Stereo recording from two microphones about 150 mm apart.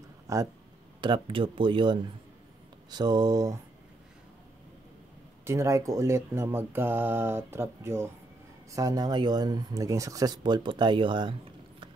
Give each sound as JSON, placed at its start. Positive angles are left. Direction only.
{"t": 0.3, "sound": "speech", "side_deg": -20}
{"t": 1.0, "sound": "speech", "side_deg": -35}
{"t": 5.4, "sound": "speech", "side_deg": -20}